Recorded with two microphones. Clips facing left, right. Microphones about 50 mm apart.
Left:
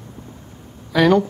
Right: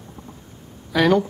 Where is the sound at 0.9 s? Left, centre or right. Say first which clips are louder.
Left 2 dB; centre.